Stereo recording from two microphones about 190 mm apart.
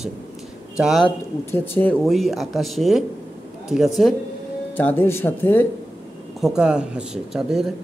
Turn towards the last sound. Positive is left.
turn(degrees=0)  # may be behind; listen again after turning